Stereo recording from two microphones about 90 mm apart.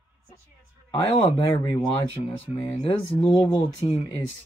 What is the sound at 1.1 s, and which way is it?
Speech, 90° left.